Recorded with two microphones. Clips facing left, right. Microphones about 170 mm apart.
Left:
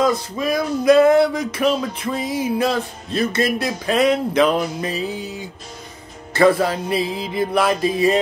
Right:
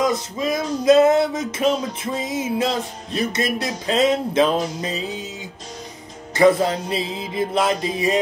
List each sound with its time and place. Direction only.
0.0 s music: 20° right (ahead or behind)